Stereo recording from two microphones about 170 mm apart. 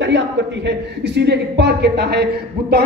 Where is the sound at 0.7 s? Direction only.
85° right.